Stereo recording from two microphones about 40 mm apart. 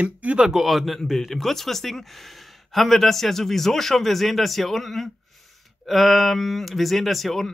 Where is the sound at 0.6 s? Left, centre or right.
Centre.